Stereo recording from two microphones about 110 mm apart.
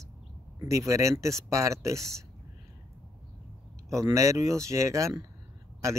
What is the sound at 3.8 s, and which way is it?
Speech, 30° right (ahead or behind).